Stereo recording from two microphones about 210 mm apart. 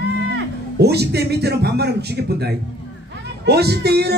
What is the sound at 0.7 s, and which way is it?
Speech, 50° right (ahead or behind).